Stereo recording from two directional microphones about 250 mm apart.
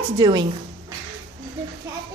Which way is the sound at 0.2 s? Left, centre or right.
Centre.